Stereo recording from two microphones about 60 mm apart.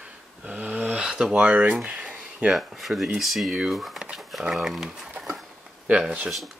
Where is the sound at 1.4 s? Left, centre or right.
Right.